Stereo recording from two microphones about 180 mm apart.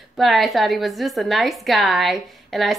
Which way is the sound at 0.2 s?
Centre (ahead or behind).